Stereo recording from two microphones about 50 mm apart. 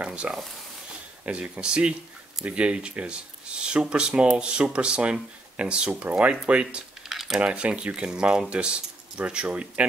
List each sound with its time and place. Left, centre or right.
0.0 s sizzle: right
1.2 s speech: right
7.1 s typing: centre
7.3 s speech: right